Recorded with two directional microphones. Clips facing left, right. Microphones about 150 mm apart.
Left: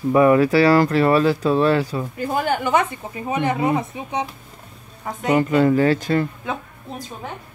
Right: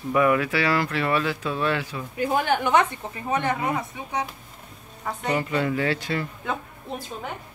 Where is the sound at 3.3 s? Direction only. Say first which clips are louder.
Left 5 dB; 20° left (ahead or behind).